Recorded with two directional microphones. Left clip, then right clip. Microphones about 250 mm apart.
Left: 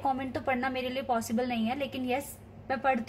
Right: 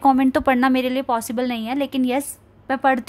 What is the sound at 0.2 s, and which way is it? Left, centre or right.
A woman's voice, right.